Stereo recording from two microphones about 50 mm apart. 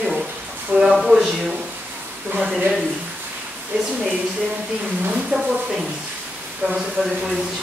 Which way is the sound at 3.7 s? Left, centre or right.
Right.